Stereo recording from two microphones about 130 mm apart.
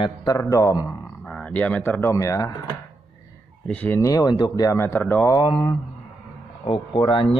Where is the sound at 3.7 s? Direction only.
15° left (ahead or behind).